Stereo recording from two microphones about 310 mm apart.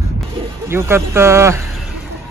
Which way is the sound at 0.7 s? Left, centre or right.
Centre.